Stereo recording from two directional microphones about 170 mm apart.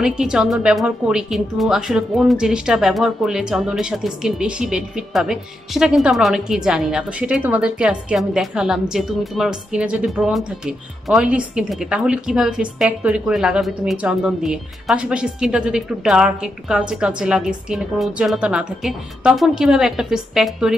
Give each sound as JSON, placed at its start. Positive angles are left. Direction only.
{"t": 0.0, "sound": "a woman's voice", "side_deg": -5}